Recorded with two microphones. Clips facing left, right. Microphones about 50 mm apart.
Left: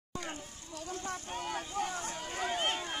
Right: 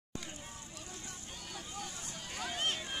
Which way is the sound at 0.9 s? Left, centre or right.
Left.